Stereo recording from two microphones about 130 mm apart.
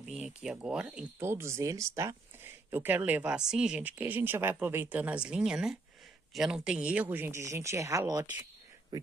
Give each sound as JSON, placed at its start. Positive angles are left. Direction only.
{"t": 0.0, "sound": "speech", "side_deg": -5}
{"t": 1.2, "sound": "speech", "side_deg": -20}